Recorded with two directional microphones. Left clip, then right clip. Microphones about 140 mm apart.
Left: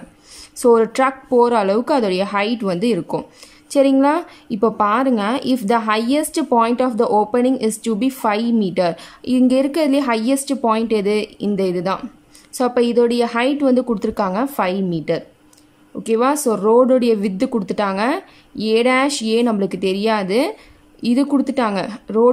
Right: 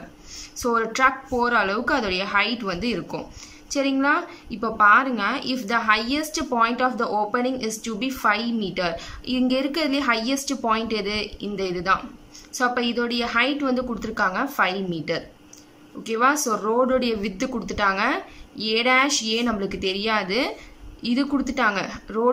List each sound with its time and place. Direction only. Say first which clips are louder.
0.4 s a woman's voice: left 10 dB; 40° left (ahead or behind)